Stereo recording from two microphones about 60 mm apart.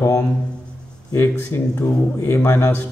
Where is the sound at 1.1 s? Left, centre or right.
Left.